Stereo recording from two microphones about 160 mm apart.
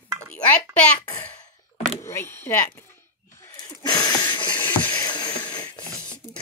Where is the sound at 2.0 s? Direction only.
15° left (ahead or behind).